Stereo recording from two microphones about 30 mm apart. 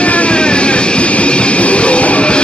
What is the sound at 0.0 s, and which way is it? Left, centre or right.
Music, left.